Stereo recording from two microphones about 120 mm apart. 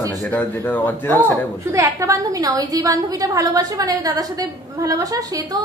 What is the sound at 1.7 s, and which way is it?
A woman's voice, 25° right (ahead or behind).